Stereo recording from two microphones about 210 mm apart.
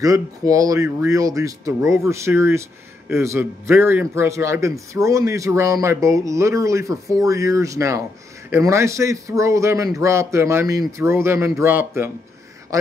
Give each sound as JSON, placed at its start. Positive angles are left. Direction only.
{"t": 0.0, "sound": "a man's voice", "side_deg": -15}